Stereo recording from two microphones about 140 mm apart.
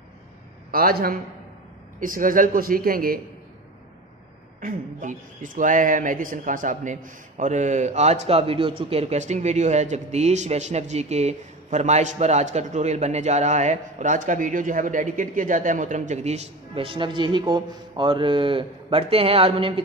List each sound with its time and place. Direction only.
0.7 s a man's voice: 90° right
2.0 s speech: 75° right (ahead or behind)
4.6 s speech: 70° right (ahead or behind); by 19.8 s 40° right (ahead or behind)